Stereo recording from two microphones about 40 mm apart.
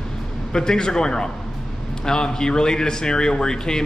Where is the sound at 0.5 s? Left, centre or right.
Centre.